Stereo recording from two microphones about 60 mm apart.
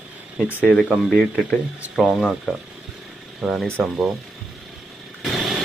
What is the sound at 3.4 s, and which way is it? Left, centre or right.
Speech, centre.